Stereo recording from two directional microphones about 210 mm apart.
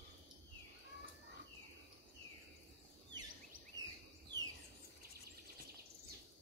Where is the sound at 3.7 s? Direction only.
20° right (ahead or behind).